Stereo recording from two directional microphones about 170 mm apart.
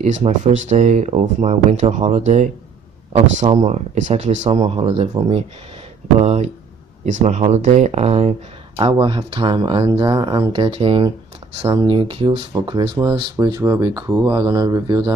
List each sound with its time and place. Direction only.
0.0 s speech: 40° right (ahead or behind)
3.6 s speech: 40° right (ahead or behind); by 15.1 s 20° right (ahead or behind)